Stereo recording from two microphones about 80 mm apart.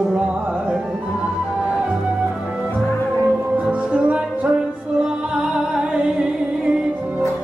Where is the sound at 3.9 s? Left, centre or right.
Centre.